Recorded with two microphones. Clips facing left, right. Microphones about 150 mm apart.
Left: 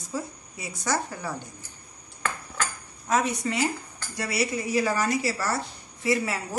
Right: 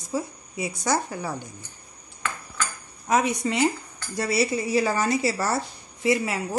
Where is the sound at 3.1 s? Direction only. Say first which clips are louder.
Right 2 dB; 15° right (ahead or behind).